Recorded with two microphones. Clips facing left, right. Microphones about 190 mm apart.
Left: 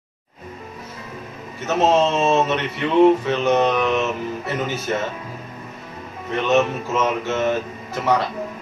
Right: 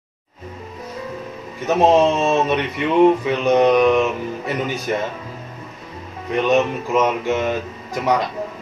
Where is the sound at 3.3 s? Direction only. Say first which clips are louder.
Right 3 dB; 15° right (ahead or behind).